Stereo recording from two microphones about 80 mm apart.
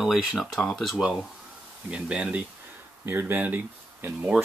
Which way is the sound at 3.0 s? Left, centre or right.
Right.